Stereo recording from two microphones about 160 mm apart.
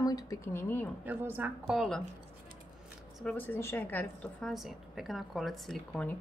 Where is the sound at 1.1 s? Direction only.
15° right (ahead or behind).